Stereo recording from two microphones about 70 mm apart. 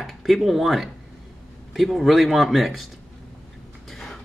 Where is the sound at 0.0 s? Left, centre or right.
Centre.